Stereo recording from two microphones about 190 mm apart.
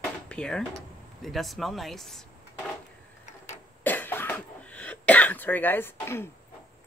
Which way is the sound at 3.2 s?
35° left (ahead or behind).